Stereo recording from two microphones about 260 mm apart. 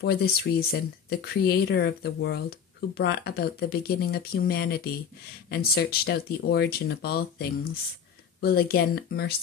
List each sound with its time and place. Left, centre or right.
0.0 s speech: left